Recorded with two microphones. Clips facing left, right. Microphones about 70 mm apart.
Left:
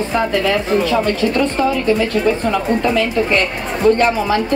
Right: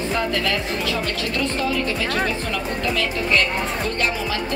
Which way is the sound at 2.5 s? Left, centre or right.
Left.